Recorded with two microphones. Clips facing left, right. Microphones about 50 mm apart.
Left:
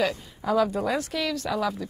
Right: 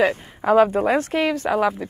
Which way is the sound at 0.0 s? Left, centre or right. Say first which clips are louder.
Right 7 dB; right.